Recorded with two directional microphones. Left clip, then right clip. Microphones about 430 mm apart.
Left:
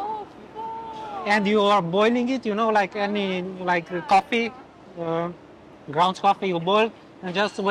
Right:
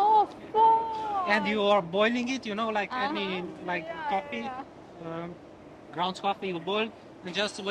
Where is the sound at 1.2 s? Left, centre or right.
Left.